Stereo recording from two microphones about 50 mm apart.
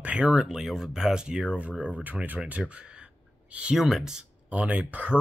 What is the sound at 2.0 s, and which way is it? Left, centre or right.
Speech, right.